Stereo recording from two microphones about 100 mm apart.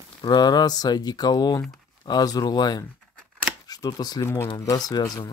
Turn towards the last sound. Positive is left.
turn(degrees=40)  # may be behind; listen again after turning